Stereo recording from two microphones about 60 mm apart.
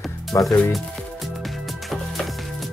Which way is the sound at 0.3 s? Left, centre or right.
Left.